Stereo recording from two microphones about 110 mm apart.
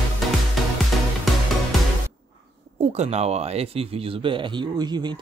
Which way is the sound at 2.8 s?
80° right.